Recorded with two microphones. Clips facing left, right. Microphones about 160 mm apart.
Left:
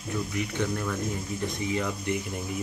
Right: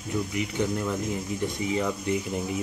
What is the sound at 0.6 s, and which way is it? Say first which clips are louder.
Speech: right 3 dB; 15° right (ahead or behind).